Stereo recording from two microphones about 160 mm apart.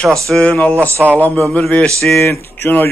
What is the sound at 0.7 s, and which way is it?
Speech, 15° right (ahead or behind).